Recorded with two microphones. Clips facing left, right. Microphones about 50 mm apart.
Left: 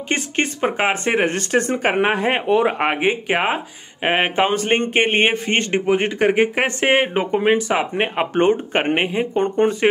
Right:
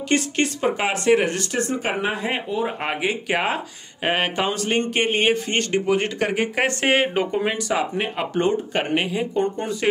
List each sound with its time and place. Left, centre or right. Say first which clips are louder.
0.1 s speech: even; left
2.4 s speech: left 8 dB; left
2.9 s speech: left 4 dB; left